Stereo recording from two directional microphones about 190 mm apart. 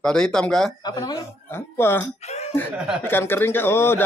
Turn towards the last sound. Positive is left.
turn(degrees=10)  # may be behind; listen again after turning